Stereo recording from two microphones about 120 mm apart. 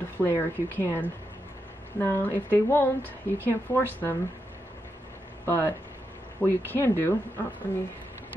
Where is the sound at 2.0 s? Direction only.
20° left (ahead or behind).